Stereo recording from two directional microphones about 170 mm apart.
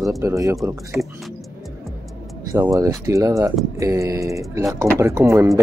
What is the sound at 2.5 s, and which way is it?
Speech, 20° right (ahead or behind).